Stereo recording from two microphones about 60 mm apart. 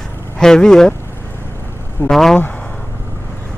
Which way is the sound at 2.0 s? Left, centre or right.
Centre.